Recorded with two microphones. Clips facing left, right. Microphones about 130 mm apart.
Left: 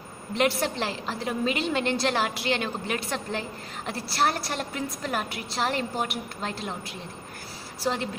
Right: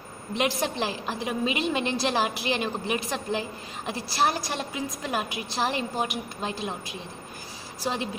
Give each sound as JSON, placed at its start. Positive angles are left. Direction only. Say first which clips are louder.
{"t": 0.4, "sound": "a woman's voice", "louder": "left 1 dB", "side_deg": -15}
{"t": 7.8, "sound": "a woman's voice", "louder": "left 2 dB", "side_deg": -15}